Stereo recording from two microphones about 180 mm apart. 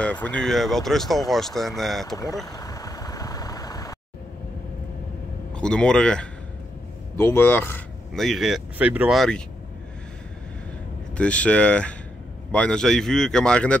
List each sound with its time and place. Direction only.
0.0 s speech: 5° left (ahead or behind)
2.5 s vehicle: 20° left (ahead or behind)
5.6 s speech: 5° left (ahead or behind)
8.1 s speech: centre (ahead or behind)
11.1 s speech: 5° left (ahead or behind)